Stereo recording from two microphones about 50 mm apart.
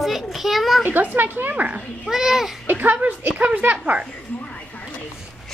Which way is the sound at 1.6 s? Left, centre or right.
Right.